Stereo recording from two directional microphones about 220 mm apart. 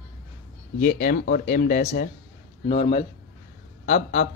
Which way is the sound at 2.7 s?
30° left (ahead or behind).